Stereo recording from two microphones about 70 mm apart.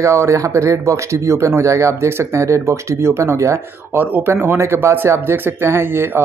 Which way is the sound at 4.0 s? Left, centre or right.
Right.